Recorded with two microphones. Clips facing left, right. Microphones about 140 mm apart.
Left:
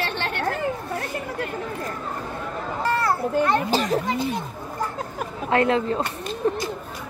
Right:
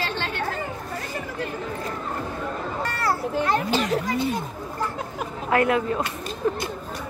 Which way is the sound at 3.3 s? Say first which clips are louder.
Left 3 dB; 40° left (ahead or behind).